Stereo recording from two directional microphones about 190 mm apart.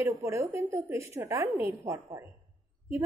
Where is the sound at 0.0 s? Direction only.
15° right (ahead or behind).